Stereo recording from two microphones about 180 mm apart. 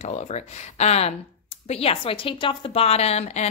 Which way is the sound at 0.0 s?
40° left (ahead or behind).